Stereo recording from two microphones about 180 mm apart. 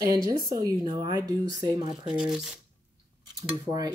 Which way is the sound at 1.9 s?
5° right (ahead or behind).